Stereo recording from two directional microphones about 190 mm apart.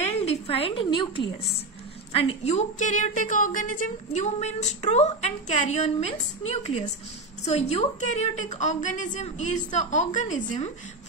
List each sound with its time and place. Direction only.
0.0 s a woman's voice: 35° left (ahead or behind)